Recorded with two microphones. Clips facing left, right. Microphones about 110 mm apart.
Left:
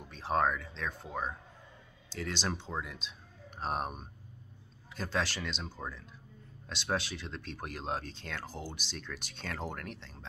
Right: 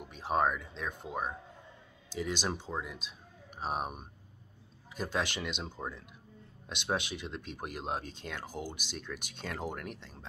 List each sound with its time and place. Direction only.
0.0 s speech: 10° right (ahead or behind)